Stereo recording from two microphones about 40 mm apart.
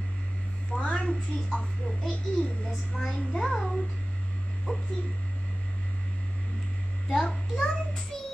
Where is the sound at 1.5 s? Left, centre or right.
Centre.